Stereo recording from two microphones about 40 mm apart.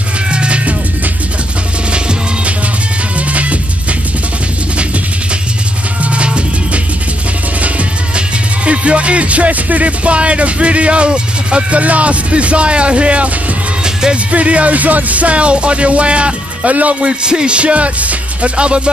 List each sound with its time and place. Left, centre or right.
0.3 s music: right
3.2 s music: right
6.0 s music: right
8.6 s music: right
14.3 s music: right
17.1 s music: right